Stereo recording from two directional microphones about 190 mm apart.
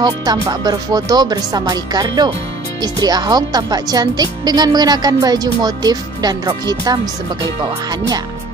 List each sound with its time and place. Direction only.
0.0 s speech: 20° right (ahead or behind)